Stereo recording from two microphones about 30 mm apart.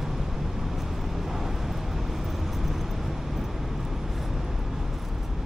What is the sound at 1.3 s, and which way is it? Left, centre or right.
Vehicle, centre.